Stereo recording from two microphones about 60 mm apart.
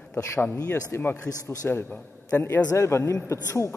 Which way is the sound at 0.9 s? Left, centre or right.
Left.